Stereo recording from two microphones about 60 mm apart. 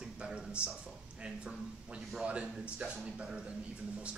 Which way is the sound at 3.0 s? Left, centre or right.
Centre.